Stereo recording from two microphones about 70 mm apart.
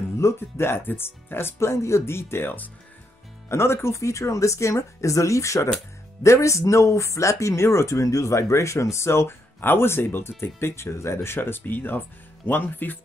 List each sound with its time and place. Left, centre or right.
0.2 s speech: left